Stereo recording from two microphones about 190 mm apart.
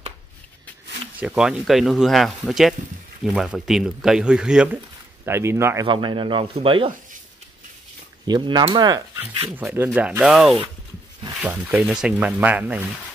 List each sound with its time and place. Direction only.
1.2 s speech: 5° right (ahead or behind)
5.9 s speech: 25° right (ahead or behind)
8.3 s speech: 25° right (ahead or behind)
9.5 s speech: 10° right (ahead or behind)